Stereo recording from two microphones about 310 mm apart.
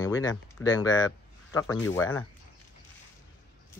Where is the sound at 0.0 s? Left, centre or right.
Centre.